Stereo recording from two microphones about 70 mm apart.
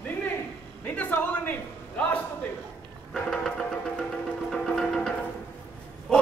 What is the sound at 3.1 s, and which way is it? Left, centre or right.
Music, centre.